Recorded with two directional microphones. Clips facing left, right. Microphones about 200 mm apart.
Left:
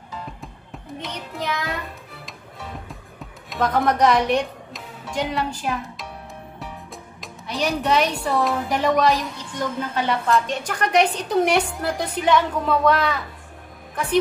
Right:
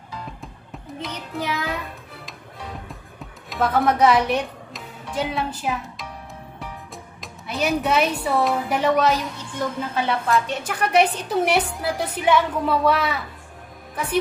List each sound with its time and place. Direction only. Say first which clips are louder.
1.0 s music: right 1 dB; 10° right (ahead or behind)
3.4 s speech: even; 5° right (ahead or behind)
7.2 s a woman's voice: even; 5° right (ahead or behind)